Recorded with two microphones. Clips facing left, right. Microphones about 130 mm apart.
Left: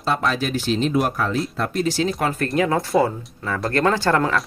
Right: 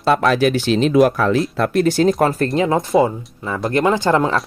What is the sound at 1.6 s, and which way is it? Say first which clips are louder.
Speech: right 6 dB; 60° right (ahead or behind).